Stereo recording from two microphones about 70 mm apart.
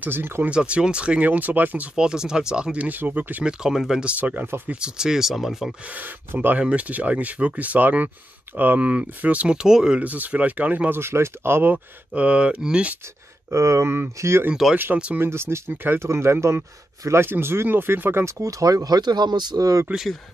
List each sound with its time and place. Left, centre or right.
0.0 s speech: right
0.5 s speech: centre
2.0 s speech: centre
3.4 s speech: centre
4.0 s speech: right
4.7 s speech: centre
5.9 s speech: right; by 10.0 s centre
10.0 s speech: right
11.0 s speech: right
12.1 s speech: centre
13.5 s speech: right
14.5 s speech: centre
15.1 s speech: right
18.2 s speech: right